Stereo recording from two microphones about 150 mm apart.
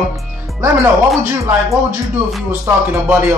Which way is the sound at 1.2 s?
15° right (ahead or behind).